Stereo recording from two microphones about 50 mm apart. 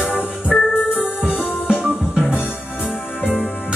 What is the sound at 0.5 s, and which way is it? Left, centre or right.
Keyboard, centre.